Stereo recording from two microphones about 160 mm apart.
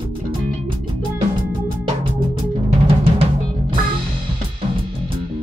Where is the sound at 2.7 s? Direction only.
40° right (ahead or behind).